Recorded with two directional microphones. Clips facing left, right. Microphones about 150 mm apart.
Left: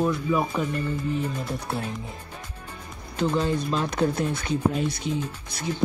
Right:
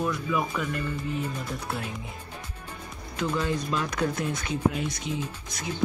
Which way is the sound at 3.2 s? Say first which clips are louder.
Left 4 dB; 30° left (ahead or behind).